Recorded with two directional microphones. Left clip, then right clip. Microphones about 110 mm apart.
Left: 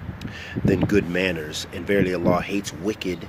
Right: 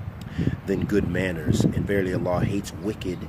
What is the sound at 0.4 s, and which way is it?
Speech, 15° right (ahead or behind).